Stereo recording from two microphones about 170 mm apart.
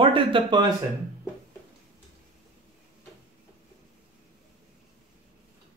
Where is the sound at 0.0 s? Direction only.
30° right (ahead or behind).